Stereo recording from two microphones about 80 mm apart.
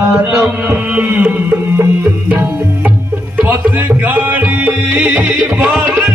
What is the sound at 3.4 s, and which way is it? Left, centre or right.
Music, right.